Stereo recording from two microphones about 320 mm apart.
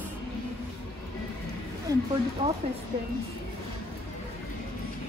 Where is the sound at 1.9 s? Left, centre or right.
Centre.